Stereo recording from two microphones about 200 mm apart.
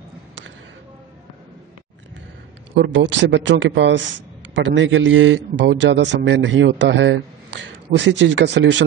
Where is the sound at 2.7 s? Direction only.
65° right (ahead or behind).